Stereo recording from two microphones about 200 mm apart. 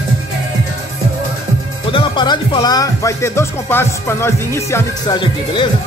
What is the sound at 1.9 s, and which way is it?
Speech, 25° left (ahead or behind).